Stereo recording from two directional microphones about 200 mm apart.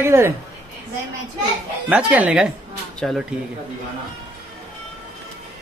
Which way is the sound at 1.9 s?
5° right (ahead or behind).